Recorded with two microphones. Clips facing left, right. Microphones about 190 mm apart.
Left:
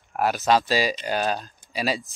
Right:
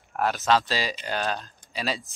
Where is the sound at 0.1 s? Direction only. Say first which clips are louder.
Left 2 dB; 10° left (ahead or behind).